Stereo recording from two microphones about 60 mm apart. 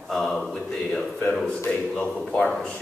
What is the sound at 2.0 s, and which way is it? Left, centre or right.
Speech, left.